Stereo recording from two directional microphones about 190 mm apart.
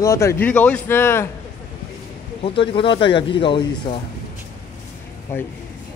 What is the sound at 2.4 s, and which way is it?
Speech, 30° left (ahead or behind).